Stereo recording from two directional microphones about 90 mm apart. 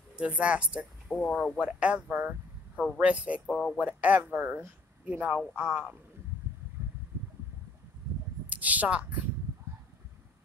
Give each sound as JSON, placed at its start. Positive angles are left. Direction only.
{"t": 0.1, "sound": "speech", "side_deg": -15}
{"t": 1.0, "sound": "speech", "side_deg": 10}
{"t": 1.6, "sound": "speech", "side_deg": -15}
{"t": 3.4, "sound": "speech", "side_deg": 10}
{"t": 3.8, "sound": "speech", "side_deg": -15}
{"t": 8.5, "sound": "a woman's voice", "side_deg": -15}